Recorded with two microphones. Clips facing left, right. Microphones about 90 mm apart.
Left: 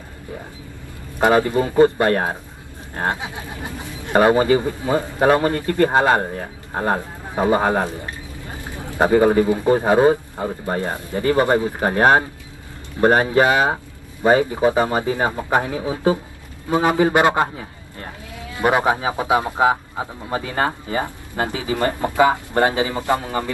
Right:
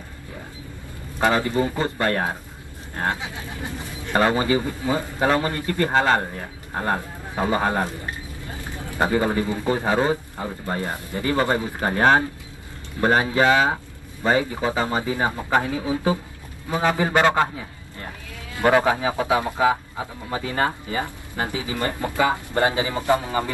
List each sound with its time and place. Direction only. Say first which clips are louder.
1.2 s speech: left 4 dB; 20° left (ahead or behind)
18.6 s speech: even; 20° left (ahead or behind)
23.1 s speech: even; 20° right (ahead or behind)